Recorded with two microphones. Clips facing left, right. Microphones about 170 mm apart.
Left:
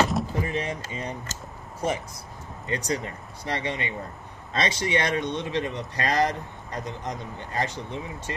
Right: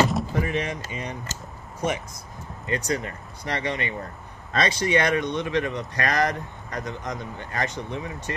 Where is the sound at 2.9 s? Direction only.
25° left (ahead or behind).